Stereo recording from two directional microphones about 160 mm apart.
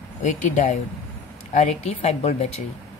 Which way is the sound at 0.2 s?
50° left (ahead or behind).